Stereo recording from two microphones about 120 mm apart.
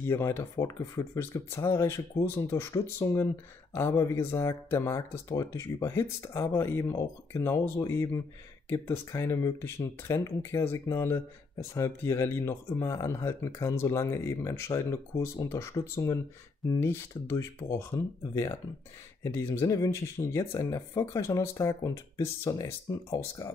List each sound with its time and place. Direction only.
0.0 s speech: 20° left (ahead or behind)